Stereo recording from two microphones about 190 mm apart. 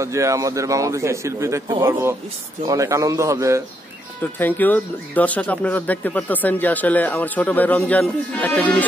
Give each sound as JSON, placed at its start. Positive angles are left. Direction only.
{"t": 0.0, "sound": "speech", "side_deg": -15}
{"t": 4.2, "sound": "speech", "side_deg": 10}